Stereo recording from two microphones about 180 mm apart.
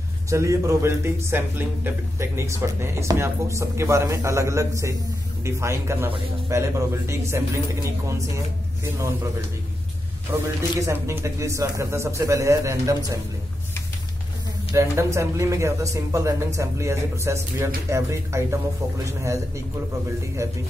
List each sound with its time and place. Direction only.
0.3 s a man's voice: 15° right (ahead or behind)
8.8 s a man's voice: 15° right (ahead or behind)
10.8 s a man's voice: 15° right (ahead or behind)
14.7 s a man's voice: 15° right (ahead or behind)